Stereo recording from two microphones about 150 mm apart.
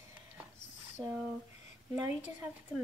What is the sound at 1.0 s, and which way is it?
Speech, 30° right (ahead or behind).